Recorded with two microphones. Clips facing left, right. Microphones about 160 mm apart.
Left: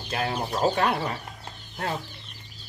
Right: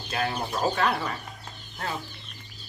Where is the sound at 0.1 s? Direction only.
25° left (ahead or behind).